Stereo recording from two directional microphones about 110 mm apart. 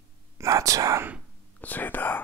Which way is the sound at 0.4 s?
30° right (ahead or behind).